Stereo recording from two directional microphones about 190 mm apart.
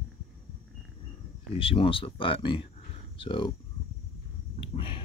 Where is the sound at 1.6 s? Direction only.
30° left (ahead or behind).